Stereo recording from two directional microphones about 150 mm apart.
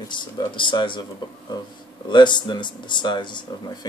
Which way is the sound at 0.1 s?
30° left (ahead or behind).